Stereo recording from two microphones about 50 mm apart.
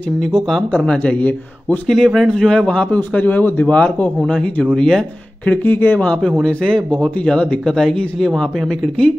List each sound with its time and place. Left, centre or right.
0.2 s speech: centre
1.1 s a man's voice: left
1.9 s a man's voice: centre
2.3 s a man's voice: centre
3.1 s a man's voice: left
3.6 s a man's voice: left
5.6 s a man's voice: left
6.4 s speech: centre